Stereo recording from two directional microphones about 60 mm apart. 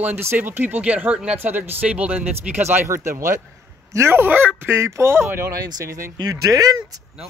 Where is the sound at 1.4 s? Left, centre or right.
Right.